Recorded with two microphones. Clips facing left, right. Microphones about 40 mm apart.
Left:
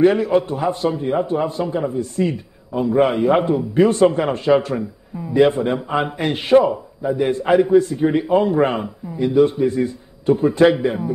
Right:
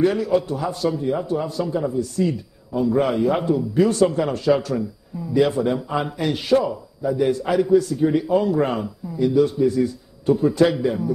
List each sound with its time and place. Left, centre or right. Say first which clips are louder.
0.0 s a man's voice: left 4 dB; left